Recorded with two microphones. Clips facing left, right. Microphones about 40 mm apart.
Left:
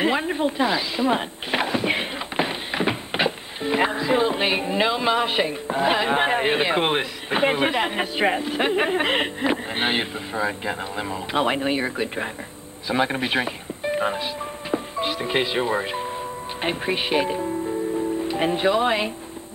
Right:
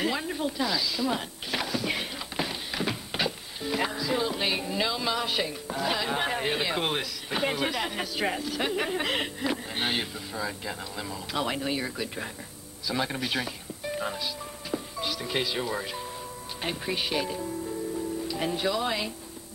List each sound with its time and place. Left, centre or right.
0.0 s speech: left